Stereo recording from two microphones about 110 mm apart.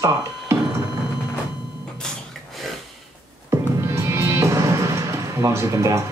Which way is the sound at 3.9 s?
25° right (ahead or behind).